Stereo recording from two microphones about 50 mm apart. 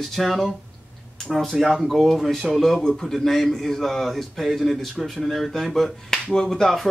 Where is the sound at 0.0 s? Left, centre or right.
Centre.